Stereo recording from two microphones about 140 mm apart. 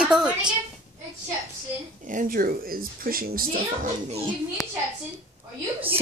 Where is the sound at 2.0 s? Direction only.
80° right.